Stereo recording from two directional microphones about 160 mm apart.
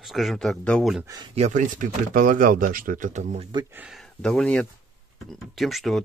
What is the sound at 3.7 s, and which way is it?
Speech, 10° right (ahead or behind).